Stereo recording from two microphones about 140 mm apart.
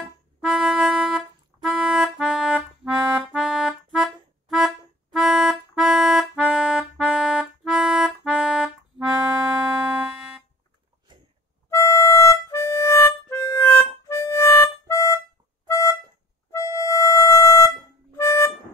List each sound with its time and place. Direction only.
0.4 s music: centre (ahead or behind)
11.7 s harmonica: 20° left (ahead or behind)
15.6 s music: 25° left (ahead or behind)
16.5 s harmonica: 25° left (ahead or behind)